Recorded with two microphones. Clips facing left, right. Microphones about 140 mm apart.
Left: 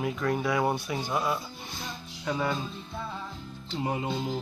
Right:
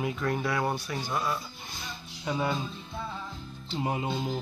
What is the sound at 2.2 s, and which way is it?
Speech, 15° right (ahead or behind).